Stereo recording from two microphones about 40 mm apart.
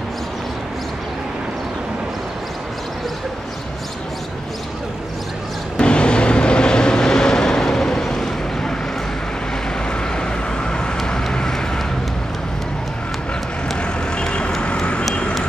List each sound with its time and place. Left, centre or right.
5.8 s vehicle: left
9.8 s vehicle: left
14.1 s vehicle: left